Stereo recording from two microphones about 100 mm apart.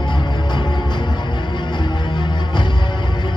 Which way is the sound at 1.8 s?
50° left (ahead or behind).